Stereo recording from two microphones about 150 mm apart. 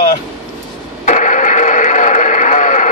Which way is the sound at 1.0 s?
55° left (ahead or behind).